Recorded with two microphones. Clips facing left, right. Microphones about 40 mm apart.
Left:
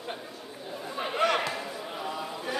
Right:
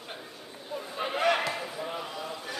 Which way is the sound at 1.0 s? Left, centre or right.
Centre.